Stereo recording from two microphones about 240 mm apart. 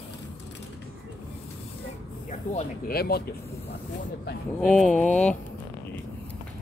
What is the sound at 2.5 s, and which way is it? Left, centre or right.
Speech, left.